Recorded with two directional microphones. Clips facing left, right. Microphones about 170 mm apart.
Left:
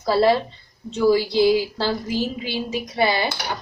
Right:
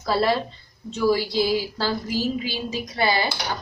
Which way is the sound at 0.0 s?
25° left (ahead or behind).